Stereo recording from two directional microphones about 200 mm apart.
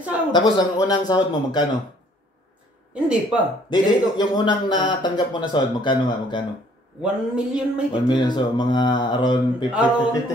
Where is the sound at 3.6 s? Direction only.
20° left (ahead or behind).